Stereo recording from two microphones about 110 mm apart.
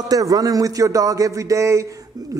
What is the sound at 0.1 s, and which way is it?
Speech, 30° right (ahead or behind).